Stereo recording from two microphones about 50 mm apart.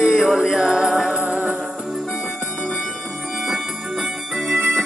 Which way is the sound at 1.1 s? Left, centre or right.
Centre.